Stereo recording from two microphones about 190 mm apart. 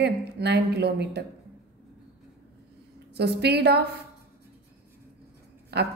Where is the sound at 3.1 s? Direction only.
60° right (ahead or behind).